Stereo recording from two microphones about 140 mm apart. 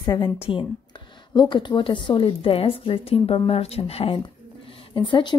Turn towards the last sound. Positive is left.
turn(degrees=35)  # may be behind; listen again after turning